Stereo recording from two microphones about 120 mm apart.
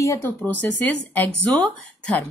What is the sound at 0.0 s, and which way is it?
A woman's voice, 25° left (ahead or behind).